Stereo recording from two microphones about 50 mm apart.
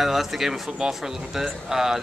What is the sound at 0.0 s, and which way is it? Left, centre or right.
Speech, centre.